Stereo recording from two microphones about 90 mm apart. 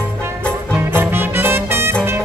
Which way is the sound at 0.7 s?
25° right (ahead or behind).